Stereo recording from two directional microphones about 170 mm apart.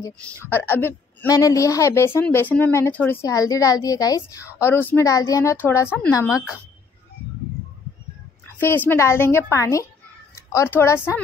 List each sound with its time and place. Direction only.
0.5 s a woman's voice: 10° left (ahead or behind)
8.5 s a woman's voice: 10° left (ahead or behind)